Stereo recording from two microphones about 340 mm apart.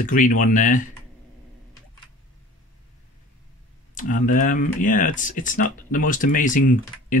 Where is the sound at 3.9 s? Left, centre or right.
Left.